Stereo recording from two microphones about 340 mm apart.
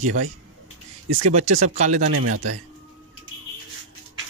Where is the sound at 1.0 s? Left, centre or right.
Right.